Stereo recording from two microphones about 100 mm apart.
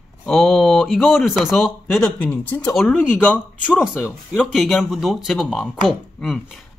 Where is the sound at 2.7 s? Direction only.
Centre (ahead or behind).